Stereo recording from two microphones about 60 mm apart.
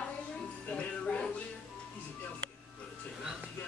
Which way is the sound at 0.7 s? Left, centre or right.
Left.